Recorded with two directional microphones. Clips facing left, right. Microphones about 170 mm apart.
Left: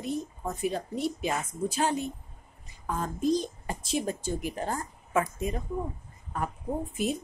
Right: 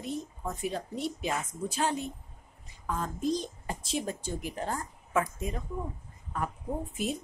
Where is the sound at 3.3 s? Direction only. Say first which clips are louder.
Left 4 dB; 5° left (ahead or behind).